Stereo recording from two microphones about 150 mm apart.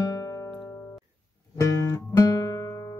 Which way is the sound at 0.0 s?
25° left (ahead or behind).